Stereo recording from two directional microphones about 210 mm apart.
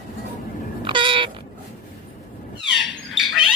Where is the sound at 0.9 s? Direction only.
25° right (ahead or behind).